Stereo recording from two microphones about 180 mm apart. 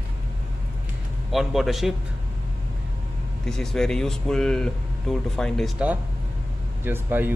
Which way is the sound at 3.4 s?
Centre (ahead or behind).